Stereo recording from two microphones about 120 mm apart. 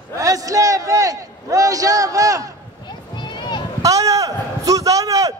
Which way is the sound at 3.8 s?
30° right (ahead or behind).